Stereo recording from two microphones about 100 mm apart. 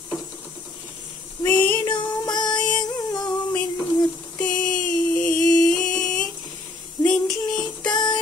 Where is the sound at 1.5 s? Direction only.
20° left (ahead or behind).